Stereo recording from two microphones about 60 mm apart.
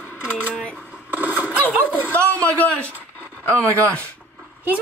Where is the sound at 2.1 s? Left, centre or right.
Left.